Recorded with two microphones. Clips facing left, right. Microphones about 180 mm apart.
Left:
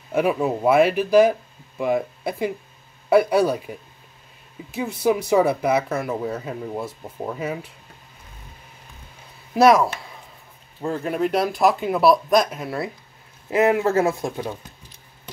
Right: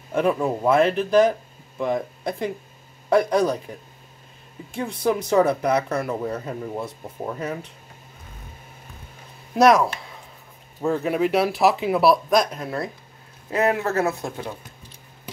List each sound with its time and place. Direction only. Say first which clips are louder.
0.1 s speech: left 1 dB; 5° left (ahead or behind)
9.5 s speech: left 1 dB; 5° left (ahead or behind)
13.5 s a man's voice: left 3 dB; 20° left (ahead or behind)